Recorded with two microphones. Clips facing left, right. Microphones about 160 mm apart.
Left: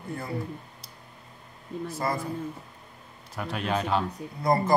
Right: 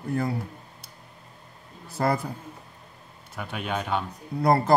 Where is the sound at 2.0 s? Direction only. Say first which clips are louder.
Right 5 dB; 65° right (ahead or behind).